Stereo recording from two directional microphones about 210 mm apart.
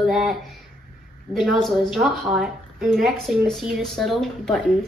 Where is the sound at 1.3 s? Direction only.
Centre (ahead or behind).